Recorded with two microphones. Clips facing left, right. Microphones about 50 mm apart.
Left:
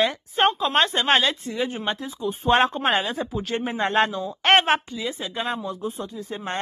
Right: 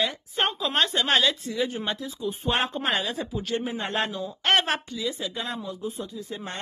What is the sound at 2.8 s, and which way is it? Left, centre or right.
Speech, left.